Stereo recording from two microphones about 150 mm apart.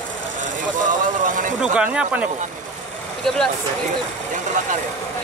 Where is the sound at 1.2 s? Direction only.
60° right (ahead or behind).